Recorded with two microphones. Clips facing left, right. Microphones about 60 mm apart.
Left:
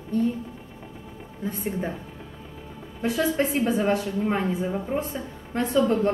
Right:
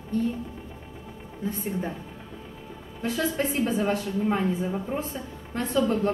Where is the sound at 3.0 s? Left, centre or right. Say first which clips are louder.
Left 3 dB; centre.